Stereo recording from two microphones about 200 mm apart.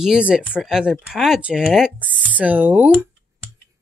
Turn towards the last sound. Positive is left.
turn(degrees=-10)  # may be behind; listen again after turning